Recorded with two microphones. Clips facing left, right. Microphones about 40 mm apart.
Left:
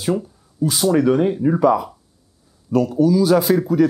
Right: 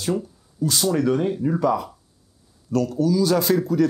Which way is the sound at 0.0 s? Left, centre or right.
Centre.